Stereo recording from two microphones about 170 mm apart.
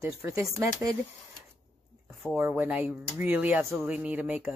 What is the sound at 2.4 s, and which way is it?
Speech, 10° right (ahead or behind).